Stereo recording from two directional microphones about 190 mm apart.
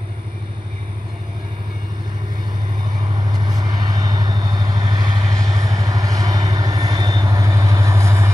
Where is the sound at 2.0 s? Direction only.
20° right (ahead or behind).